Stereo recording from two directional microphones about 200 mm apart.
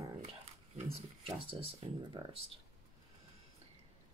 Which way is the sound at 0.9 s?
25° right (ahead or behind).